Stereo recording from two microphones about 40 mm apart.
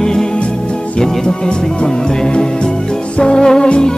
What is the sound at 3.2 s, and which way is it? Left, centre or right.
Music, centre.